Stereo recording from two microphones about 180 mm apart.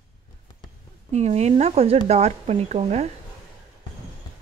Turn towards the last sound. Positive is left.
turn(degrees=-35)  # may be behind; listen again after turning